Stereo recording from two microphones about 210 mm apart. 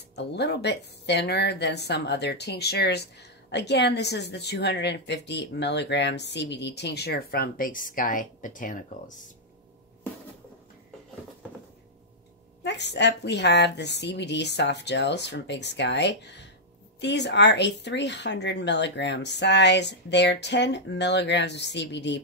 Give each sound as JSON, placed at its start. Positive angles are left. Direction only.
{"t": 0.1, "sound": "speech", "side_deg": 55}
{"t": 12.6, "sound": "speech", "side_deg": 55}